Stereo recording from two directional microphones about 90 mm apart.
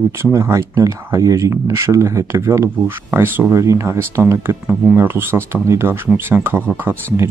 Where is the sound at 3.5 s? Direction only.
35° right (ahead or behind).